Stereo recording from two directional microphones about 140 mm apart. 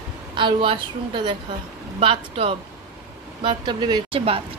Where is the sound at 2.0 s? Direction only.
40° right (ahead or behind).